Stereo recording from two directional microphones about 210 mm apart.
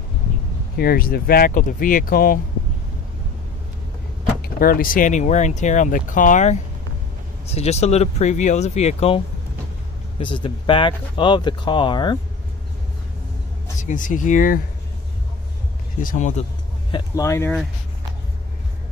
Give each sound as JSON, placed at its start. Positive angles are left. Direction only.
{"t": 0.7, "sound": "speech", "side_deg": 45}
{"t": 4.4, "sound": "speech", "side_deg": 45}
{"t": 13.7, "sound": "speech", "side_deg": 35}
{"t": 16.0, "sound": "speech", "side_deg": 40}
{"t": 16.9, "sound": "speech", "side_deg": 15}